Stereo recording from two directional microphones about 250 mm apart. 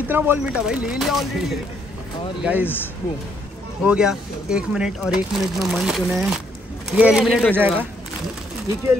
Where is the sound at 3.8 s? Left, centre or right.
Centre.